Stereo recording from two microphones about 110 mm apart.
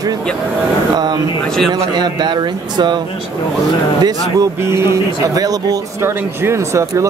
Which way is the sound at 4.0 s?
30° right (ahead or behind).